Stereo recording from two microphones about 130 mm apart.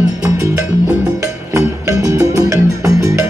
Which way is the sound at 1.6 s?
25° right (ahead or behind).